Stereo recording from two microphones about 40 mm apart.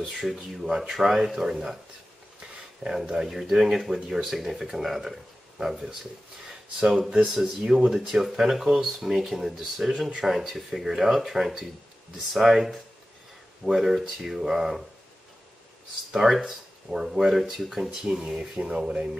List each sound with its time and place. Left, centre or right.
0.1 s speech: centre
2.4 s a sound: centre
3.0 s speech: centre
7.2 s speech: centre
16.1 s speech: centre
17.8 s speech: centre